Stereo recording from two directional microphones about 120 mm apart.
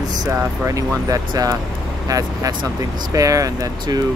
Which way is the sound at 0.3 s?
25° right (ahead or behind).